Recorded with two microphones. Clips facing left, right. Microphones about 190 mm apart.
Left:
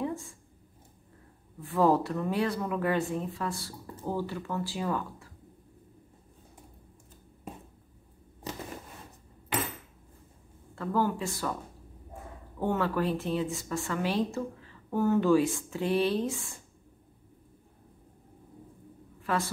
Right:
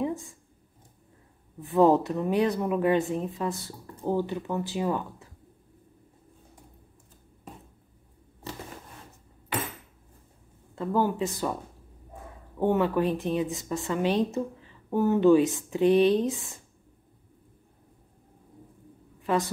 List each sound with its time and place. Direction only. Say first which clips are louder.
1.6 s speech: right 4 dB; 20° right (ahead or behind)
10.7 s speech: right 3 dB; 20° right (ahead or behind)
12.5 s speech: right 5 dB; 20° right (ahead or behind)
19.2 s a woman's voice: right 4 dB; 20° right (ahead or behind)